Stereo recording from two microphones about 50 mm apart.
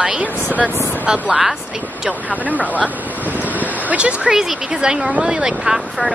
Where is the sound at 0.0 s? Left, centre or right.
Right.